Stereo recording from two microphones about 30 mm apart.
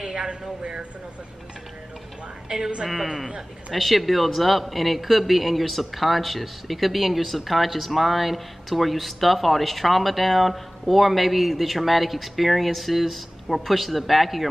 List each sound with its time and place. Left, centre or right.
0.3 s speech: right
3.7 s speech: centre